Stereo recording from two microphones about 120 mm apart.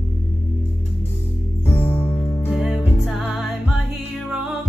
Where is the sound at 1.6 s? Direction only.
20° left (ahead or behind).